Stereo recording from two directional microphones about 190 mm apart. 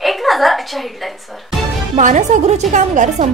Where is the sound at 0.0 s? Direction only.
Centre (ahead or behind).